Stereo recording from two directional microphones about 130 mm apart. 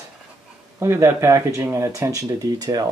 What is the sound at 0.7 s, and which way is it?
Speech, 20° right (ahead or behind).